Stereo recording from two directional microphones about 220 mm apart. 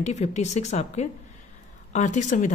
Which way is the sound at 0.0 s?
30° left (ahead or behind).